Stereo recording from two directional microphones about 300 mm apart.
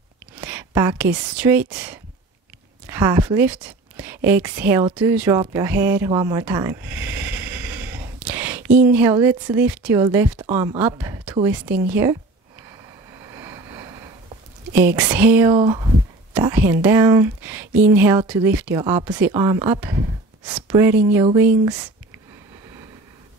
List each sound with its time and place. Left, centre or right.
0.4 s a woman's voice: centre
13.3 s vehicle: centre
14.7 s speech: centre